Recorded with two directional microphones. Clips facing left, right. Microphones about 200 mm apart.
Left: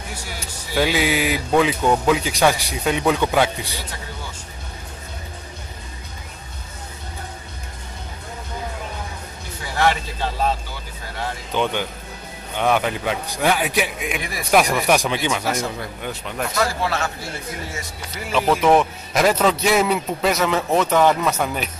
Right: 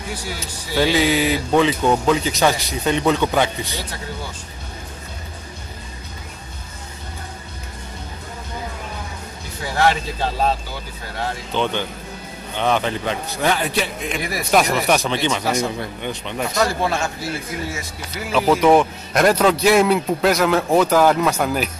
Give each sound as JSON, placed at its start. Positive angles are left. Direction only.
{"t": 0.7, "sound": "a man's voice", "side_deg": 10}
{"t": 11.5, "sound": "a man's voice", "side_deg": 10}
{"t": 16.8, "sound": "a man's voice", "side_deg": -20}
{"t": 18.3, "sound": "a man's voice", "side_deg": 0}